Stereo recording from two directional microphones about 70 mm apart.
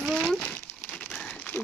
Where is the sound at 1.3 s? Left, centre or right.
Left.